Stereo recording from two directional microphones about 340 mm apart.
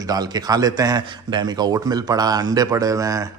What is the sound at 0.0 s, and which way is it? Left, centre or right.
Speech, centre.